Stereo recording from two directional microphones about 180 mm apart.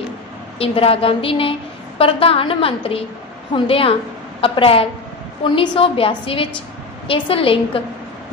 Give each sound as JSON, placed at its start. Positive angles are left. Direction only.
{"t": 0.6, "sound": "a woman's voice", "side_deg": 30}